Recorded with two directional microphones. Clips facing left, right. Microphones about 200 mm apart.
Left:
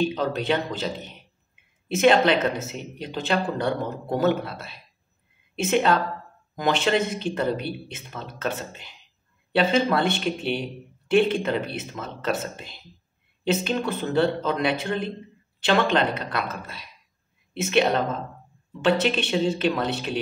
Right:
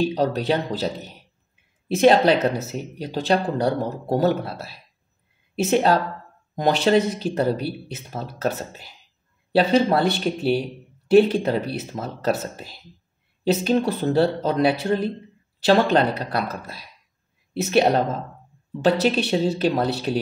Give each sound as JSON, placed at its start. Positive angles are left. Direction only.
{"t": 0.0, "sound": "speech", "side_deg": -35}